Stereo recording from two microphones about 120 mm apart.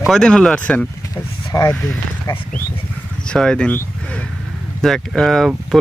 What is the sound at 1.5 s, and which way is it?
Speech, 35° left (ahead or behind).